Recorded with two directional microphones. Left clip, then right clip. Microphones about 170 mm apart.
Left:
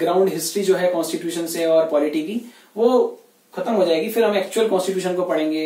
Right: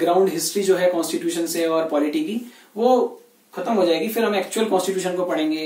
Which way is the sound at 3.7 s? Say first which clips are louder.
Left 2 dB; 10° right (ahead or behind).